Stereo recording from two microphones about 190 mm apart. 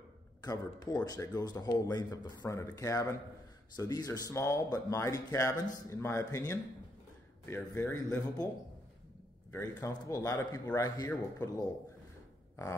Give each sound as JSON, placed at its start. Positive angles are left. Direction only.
{"t": 0.4, "sound": "speech", "side_deg": 20}
{"t": 9.5, "sound": "speech", "side_deg": 15}